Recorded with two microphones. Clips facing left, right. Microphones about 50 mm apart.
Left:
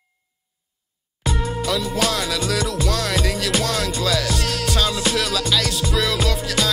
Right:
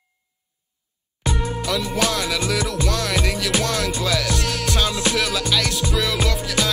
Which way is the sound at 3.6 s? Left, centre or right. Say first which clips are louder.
Even; centre.